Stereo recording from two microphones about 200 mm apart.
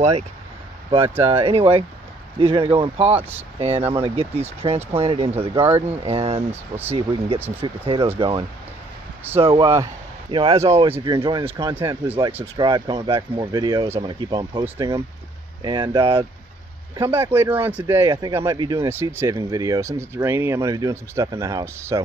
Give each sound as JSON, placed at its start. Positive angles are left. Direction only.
{"t": 0.8, "sound": "speech", "side_deg": -25}